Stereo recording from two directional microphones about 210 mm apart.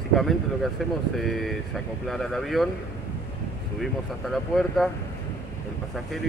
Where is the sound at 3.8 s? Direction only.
Centre (ahead or behind).